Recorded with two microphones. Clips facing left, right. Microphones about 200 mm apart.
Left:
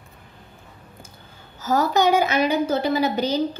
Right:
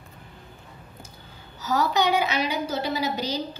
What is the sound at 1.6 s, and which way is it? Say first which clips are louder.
A woman's voice: left 4 dB; 50° left (ahead or behind).